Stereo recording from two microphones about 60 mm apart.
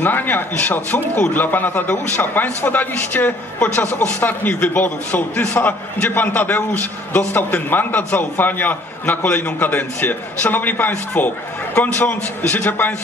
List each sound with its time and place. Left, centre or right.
0.0 s a man's voice: left